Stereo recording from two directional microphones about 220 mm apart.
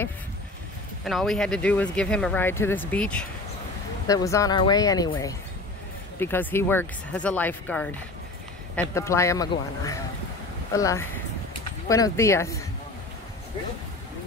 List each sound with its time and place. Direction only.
1.0 s speech: centre (ahead or behind)
8.9 s speech: 15° left (ahead or behind)